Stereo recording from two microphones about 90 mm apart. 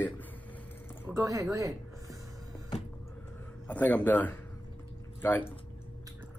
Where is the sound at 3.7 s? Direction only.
15° left (ahead or behind).